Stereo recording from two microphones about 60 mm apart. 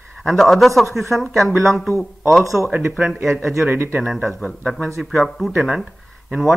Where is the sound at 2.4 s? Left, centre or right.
Right.